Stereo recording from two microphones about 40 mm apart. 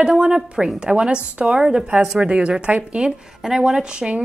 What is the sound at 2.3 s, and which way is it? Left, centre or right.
A woman's voice, right.